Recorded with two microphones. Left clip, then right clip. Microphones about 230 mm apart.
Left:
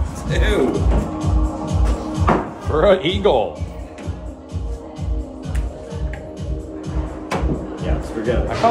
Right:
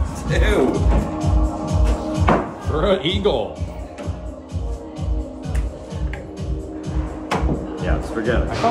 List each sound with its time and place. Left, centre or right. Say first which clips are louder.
0.2 s speech: even; centre
0.7 s music: even; centre
2.7 s speech: left 5 dB; centre
3.2 s speech: left 4 dB; left
7.2 s music: right 1 dB; centre